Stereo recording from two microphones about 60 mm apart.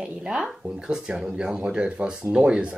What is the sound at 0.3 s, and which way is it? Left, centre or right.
Speech, centre.